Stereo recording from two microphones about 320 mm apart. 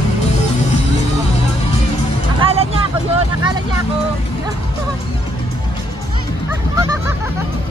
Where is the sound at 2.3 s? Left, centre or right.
Centre.